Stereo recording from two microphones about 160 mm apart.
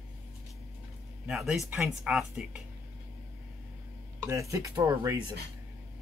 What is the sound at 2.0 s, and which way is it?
Speech, 5° right (ahead or behind).